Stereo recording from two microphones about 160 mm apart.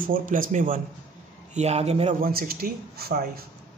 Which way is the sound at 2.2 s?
65° right (ahead or behind).